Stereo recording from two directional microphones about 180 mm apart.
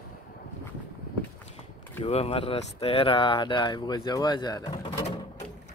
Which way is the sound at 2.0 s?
35° left (ahead or behind).